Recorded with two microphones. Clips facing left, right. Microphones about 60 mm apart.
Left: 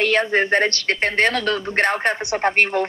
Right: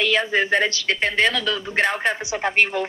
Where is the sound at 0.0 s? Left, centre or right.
Left.